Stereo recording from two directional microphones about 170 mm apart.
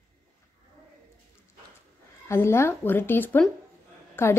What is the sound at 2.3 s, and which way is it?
A woman's voice, 15° left (ahead or behind).